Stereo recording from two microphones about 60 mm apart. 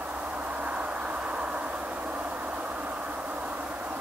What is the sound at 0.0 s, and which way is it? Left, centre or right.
Vehicle, right.